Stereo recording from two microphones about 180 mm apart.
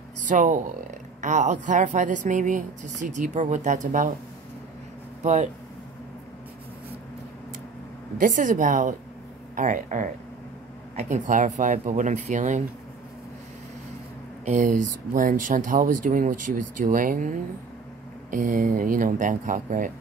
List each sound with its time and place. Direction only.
0.3 s a woman's voice: 45° right (ahead or behind)
5.2 s speech: 40° right (ahead or behind)
8.2 s a woman's voice: 45° right (ahead or behind)
14.4 s a woman's voice: 45° right (ahead or behind)
18.3 s a woman's voice: 50° right (ahead or behind)